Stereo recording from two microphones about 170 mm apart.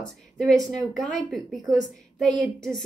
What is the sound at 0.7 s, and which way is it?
A woman's voice, centre (ahead or behind).